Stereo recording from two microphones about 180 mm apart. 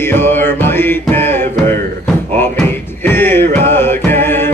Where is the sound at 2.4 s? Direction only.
10° left (ahead or behind).